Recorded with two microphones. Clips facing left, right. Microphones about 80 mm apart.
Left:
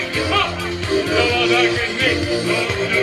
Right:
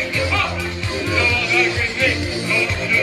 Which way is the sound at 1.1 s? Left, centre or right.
Left.